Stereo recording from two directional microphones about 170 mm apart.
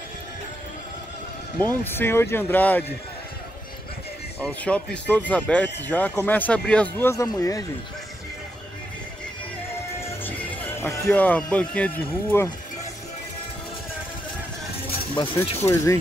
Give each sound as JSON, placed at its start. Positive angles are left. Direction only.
{"t": 1.6, "sound": "speech", "side_deg": 10}
{"t": 4.4, "sound": "speech", "side_deg": 5}
{"t": 9.9, "sound": "speech", "side_deg": 15}
{"t": 15.1, "sound": "speech", "side_deg": 25}
{"t": 15.6, "sound": "speech", "side_deg": 15}